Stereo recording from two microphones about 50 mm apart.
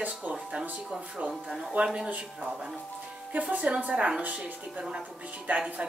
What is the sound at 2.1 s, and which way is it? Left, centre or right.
Speech, right.